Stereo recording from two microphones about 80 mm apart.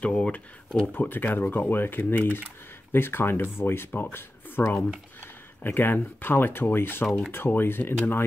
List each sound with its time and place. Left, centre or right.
0.0 s speech: centre
0.9 s speech: left